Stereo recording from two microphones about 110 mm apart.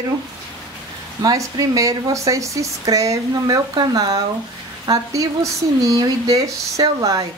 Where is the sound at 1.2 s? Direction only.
35° right (ahead or behind).